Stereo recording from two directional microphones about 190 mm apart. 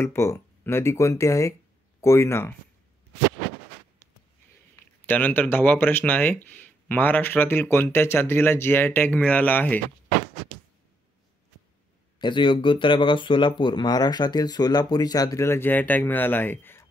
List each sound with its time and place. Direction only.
0.0 s speech: 15° left (ahead or behind)
5.0 s speech: 10° left (ahead or behind)
12.2 s speech: 25° left (ahead or behind)